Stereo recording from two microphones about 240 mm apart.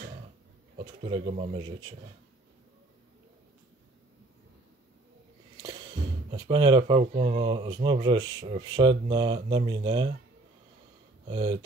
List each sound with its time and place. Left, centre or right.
0.7 s speech: right
6.3 s speech: centre
11.2 s speech: right